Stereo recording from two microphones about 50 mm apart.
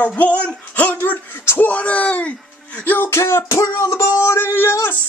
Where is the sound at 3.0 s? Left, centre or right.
Left.